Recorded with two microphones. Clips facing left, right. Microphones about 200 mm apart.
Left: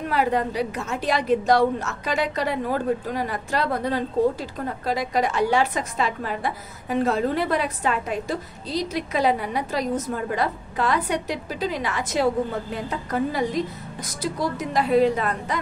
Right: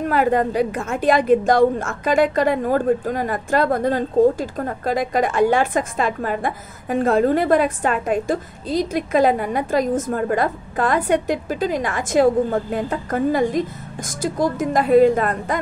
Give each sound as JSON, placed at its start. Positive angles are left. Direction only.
{"t": 0.1, "sound": "a woman's voice", "side_deg": -50}